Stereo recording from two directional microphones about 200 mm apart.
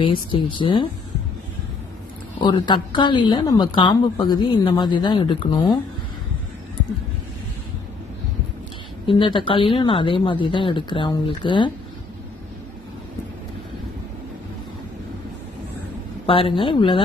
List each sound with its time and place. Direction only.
0.0 s a woman's voice: 25° left (ahead or behind)
2.3 s a woman's voice: 20° left (ahead or behind)
9.0 s a woman's voice: 25° left (ahead or behind)
16.3 s a woman's voice: 25° left (ahead or behind)